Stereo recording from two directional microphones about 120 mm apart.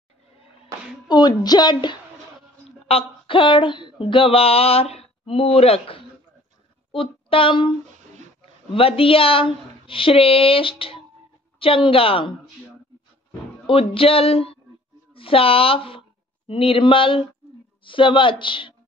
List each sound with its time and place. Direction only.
1.0 s a woman's voice: 35° left (ahead or behind)
2.9 s speech: 50° left (ahead or behind)
8.7 s a woman's voice: 50° left (ahead or behind)
13.7 s a woman's voice: 50° left (ahead or behind)